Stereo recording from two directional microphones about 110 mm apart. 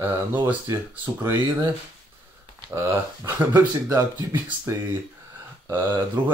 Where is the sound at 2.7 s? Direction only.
30° right (ahead or behind).